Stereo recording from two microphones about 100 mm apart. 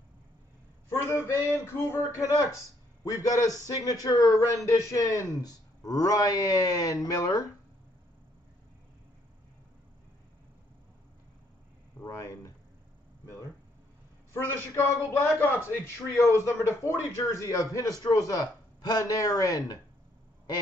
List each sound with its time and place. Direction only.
0.8 s speech: 30° left (ahead or behind)
12.0 s speech: 35° left (ahead or behind)
14.3 s a man's voice: 25° left (ahead or behind)